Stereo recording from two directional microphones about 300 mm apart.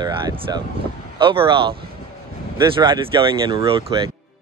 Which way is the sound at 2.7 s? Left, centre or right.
Centre.